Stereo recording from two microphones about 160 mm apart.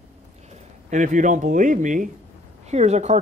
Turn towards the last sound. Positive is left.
turn(degrees=-45)  # may be behind; listen again after turning